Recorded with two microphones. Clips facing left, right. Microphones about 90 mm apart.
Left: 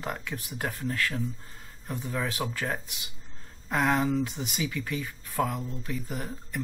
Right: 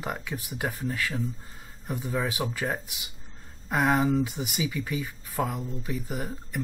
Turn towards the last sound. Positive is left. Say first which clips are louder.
# right 2 dB
turn(degrees=-10)  # may be behind; listen again after turning